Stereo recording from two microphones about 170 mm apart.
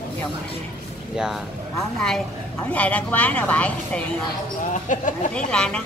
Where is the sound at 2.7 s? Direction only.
10° left (ahead or behind).